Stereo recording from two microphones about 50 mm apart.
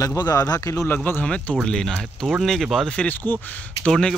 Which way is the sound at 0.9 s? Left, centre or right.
Left.